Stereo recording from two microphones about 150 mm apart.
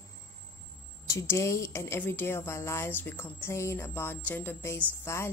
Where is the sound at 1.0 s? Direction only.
20° left (ahead or behind).